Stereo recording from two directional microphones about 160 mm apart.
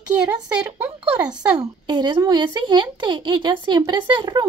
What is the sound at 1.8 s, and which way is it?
Speech, 30° right (ahead or behind).